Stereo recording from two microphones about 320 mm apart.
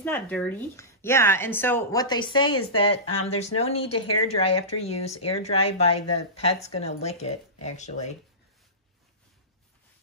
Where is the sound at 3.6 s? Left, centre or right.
Centre.